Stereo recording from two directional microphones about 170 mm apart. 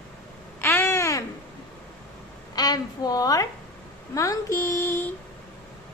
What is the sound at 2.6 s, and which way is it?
A woman's voice, 25° left (ahead or behind).